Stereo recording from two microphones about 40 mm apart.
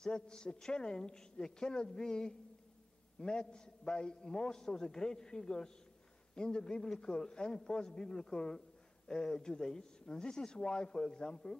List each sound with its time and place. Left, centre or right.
0.0 s a man's voice: left